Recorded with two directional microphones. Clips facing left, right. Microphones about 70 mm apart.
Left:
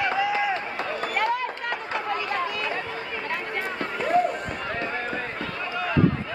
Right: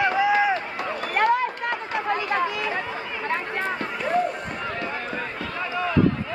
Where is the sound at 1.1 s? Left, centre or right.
Right.